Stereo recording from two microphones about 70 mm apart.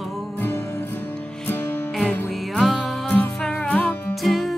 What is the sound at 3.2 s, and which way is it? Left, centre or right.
Music, left.